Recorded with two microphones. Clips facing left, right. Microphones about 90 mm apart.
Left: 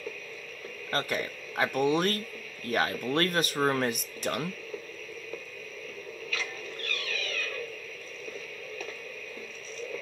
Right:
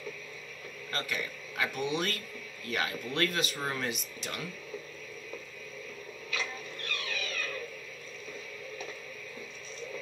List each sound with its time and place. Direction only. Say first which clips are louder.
0.9 s speech: left 5 dB; 40° left (ahead or behind)
6.3 s music: right 1 dB; 20° right (ahead or behind)